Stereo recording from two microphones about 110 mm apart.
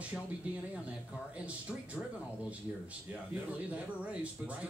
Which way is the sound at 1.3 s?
10° right (ahead or behind).